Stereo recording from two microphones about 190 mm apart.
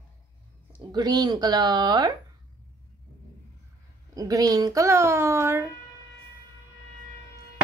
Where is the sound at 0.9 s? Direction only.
20° right (ahead or behind).